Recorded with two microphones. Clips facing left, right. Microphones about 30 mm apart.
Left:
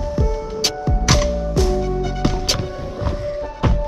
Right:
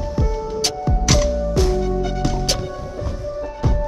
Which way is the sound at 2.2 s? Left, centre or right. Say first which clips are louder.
Left 2 dB; left.